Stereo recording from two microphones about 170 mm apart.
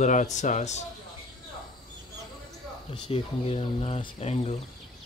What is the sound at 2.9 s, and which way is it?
Speech, 35° left (ahead or behind).